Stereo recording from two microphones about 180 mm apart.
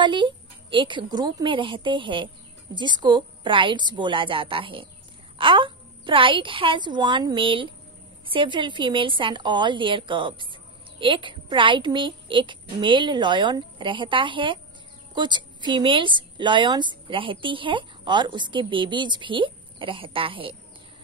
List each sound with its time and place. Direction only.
0.0 s a woman's voice: 25° right (ahead or behind)